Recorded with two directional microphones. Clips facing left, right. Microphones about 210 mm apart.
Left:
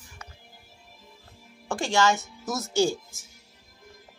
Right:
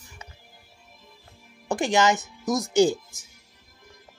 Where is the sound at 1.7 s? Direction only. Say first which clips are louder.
Right 2 dB; 20° right (ahead or behind).